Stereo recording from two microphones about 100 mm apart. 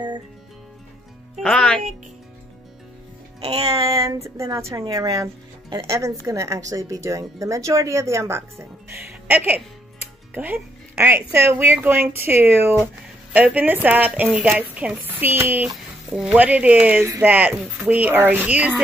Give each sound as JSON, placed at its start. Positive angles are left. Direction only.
{"t": 1.4, "sound": "speech", "side_deg": 10}
{"t": 3.3, "sound": "a woman's voice", "side_deg": -45}
{"t": 16.1, "sound": "a woman's voice", "side_deg": -10}